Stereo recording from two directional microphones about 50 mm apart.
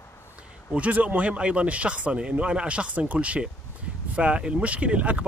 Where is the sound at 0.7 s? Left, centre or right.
Right.